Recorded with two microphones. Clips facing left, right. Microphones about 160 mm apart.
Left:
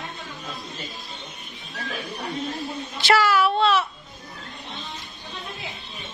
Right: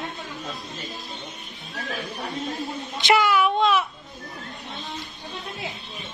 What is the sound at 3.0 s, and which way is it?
Speech, 20° right (ahead or behind).